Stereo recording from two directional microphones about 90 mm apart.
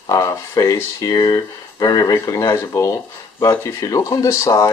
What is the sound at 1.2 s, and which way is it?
Speech, 45° left (ahead or behind).